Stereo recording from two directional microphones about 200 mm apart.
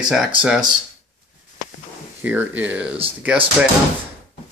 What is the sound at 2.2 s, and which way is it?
Speech, 10° right (ahead or behind).